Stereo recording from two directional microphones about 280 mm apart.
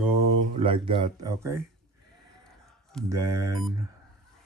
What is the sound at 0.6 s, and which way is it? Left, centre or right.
Mantra, centre.